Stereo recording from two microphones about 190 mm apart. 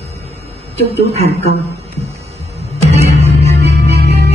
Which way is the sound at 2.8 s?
35° right (ahead or behind).